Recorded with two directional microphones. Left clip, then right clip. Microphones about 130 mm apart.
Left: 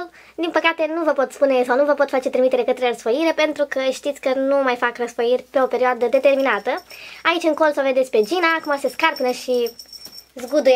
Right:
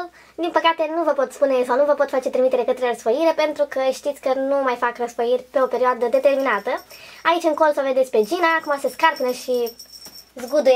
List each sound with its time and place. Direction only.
0.4 s speech: 25° left (ahead or behind)